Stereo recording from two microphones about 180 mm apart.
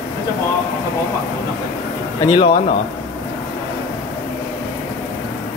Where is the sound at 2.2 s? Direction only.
25° left (ahead or behind).